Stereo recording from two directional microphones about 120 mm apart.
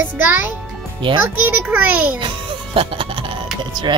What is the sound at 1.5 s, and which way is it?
Child singing, 15° right (ahead or behind).